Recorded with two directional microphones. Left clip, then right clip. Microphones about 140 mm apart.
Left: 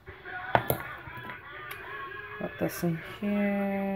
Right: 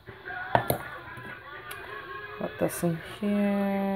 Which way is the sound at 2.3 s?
10° right (ahead or behind).